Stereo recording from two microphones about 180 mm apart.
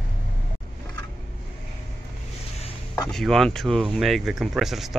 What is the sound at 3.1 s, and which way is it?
Speech, centre (ahead or behind).